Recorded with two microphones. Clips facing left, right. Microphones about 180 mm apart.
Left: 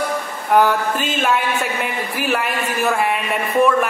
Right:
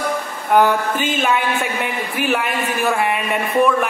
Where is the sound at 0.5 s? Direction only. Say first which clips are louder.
Even; centre (ahead or behind).